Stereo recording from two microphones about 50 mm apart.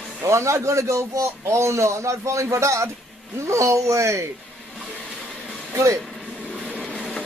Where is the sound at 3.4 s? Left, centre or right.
Right.